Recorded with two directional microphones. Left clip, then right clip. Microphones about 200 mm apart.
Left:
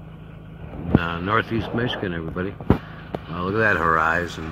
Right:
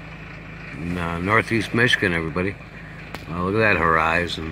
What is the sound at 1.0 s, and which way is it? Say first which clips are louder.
Speech: right 6 dB; 15° right (ahead or behind).